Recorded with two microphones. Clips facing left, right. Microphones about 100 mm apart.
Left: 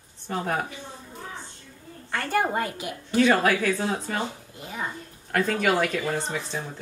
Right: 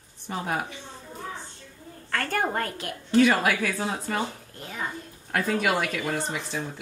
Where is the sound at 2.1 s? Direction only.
10° left (ahead or behind).